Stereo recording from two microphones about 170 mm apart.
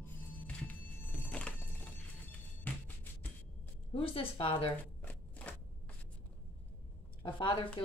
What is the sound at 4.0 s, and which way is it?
Speech, 35° left (ahead or behind).